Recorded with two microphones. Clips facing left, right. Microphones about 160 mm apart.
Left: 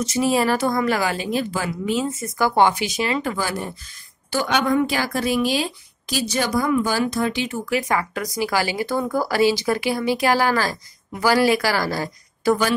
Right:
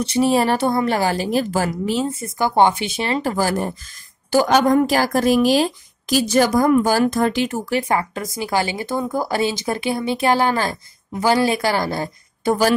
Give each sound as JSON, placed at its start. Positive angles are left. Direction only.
{"t": 0.0, "sound": "a woman's voice", "side_deg": -30}
{"t": 7.7, "sound": "speech", "side_deg": -30}